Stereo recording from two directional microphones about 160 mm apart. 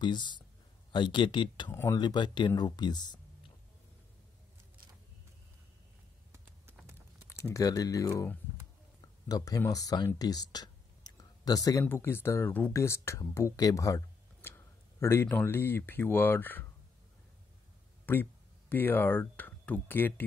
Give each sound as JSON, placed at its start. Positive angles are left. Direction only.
{"t": 0.0, "sound": "speech", "side_deg": 30}
{"t": 7.2, "sound": "speech", "side_deg": 20}
{"t": 9.3, "sound": "speech", "side_deg": 20}
{"t": 18.0, "sound": "speech", "side_deg": 10}